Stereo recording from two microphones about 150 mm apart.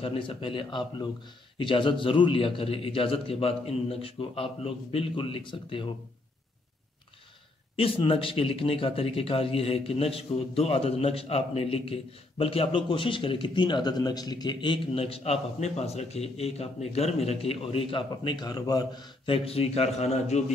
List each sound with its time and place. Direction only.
0.0 s speech: 35° left (ahead or behind)
7.7 s speech: 40° left (ahead or behind)